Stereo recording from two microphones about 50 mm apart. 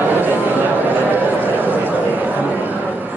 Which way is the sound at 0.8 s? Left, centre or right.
Right.